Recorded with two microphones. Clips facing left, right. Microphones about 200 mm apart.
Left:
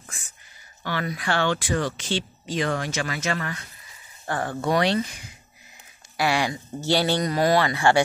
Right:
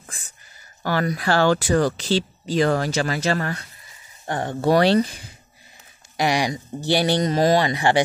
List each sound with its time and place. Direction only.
0.0 s a sound: 35° right (ahead or behind)
0.8 s speech: 40° right (ahead or behind)
4.3 s speech: 20° right (ahead or behind)
4.6 s speech: 35° right (ahead or behind)
6.1 s speech: 15° right (ahead or behind)